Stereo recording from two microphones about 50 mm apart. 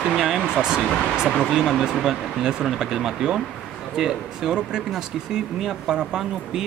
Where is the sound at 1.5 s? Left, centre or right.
Centre.